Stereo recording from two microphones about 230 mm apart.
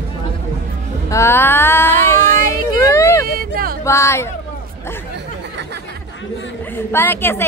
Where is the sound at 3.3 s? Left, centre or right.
Right.